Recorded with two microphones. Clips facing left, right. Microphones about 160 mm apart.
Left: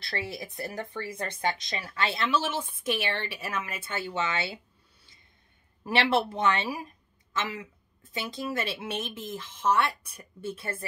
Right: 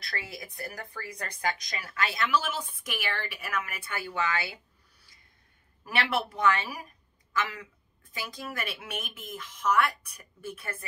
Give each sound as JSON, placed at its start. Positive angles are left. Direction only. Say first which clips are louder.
{"t": 0.0, "sound": "a woman's voice", "louder": "left 5 dB", "side_deg": 30}
{"t": 5.9, "sound": "a woman's voice", "louder": "left 5 dB", "side_deg": 25}